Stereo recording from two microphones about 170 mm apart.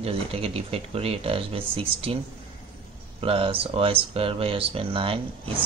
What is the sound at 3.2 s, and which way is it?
Speech, 35° right (ahead or behind).